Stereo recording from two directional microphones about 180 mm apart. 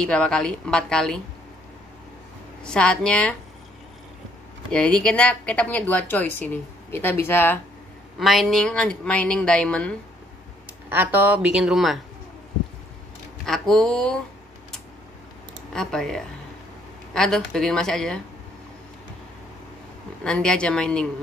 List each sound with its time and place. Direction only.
0.0 s a woman's voice: 5° left (ahead or behind)
2.6 s a woman's voice: 5° left (ahead or behind)
4.7 s speech: 5° left (ahead or behind)
8.2 s a woman's voice: centre (ahead or behind)
10.9 s a woman's voice: 10° right (ahead or behind)
13.5 s a woman's voice: centre (ahead or behind)
15.7 s a woman's voice: 5° left (ahead or behind)
20.2 s a woman's voice: 5° left (ahead or behind)